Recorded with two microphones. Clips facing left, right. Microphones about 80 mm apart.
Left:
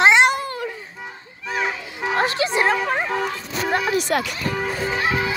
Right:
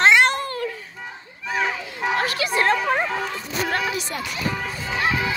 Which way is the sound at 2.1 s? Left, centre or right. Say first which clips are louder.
Left 4 dB; left.